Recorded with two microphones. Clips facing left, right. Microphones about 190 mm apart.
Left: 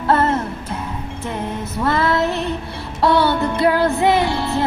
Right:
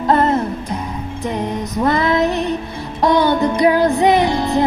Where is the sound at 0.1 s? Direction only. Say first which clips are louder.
Right 2 dB; 15° right (ahead or behind).